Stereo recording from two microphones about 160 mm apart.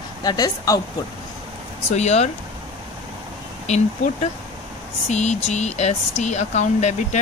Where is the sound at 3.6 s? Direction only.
45° left (ahead or behind).